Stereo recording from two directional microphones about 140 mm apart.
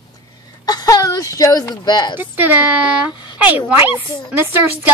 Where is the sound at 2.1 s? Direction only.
15° right (ahead or behind).